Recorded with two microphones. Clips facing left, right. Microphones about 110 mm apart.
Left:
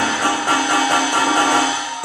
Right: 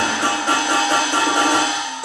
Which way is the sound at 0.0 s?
20° right (ahead or behind).